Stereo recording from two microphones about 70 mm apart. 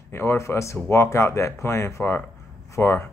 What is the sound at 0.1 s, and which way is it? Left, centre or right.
Speech, left.